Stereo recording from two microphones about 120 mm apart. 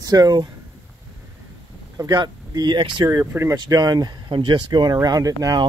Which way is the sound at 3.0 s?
20° right (ahead or behind).